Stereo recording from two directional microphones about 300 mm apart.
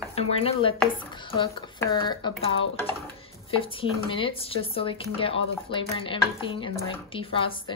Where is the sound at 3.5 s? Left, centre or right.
Centre.